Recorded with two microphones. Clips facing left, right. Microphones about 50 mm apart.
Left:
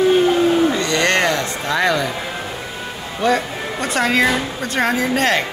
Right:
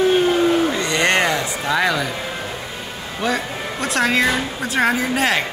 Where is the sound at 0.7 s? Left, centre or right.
Right.